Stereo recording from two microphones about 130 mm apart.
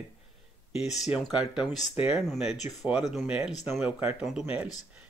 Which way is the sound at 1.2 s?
5° right (ahead or behind).